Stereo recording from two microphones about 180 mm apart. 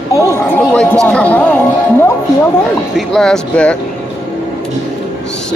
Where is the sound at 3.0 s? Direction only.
Centre (ahead or behind).